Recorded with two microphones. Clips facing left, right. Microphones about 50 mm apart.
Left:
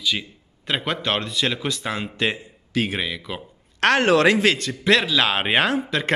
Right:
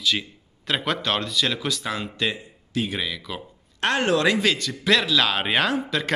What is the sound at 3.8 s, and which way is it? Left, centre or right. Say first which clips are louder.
Speech: left 4 dB; left.